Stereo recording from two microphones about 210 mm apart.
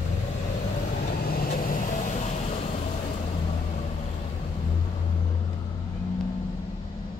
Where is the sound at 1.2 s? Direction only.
45° left (ahead or behind).